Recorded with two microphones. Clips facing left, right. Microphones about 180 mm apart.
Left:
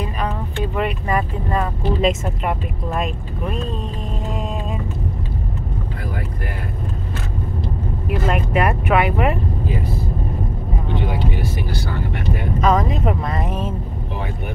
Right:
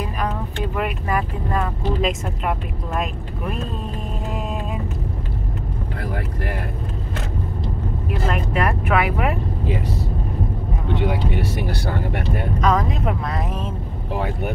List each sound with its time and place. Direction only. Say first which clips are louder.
0.7 s speech: left 2 dB; 5° right (ahead or behind)
8.1 s speech: left 4 dB; 5° left (ahead or behind)
11.0 s speech: right 1 dB; 70° right (ahead or behind)
12.5 s speech: left 3 dB; 5° left (ahead or behind)